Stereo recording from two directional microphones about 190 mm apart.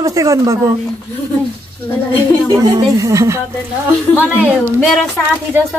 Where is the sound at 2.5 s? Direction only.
20° right (ahead or behind).